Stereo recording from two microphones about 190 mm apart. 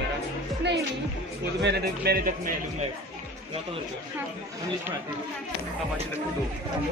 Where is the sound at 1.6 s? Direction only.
60° right (ahead or behind).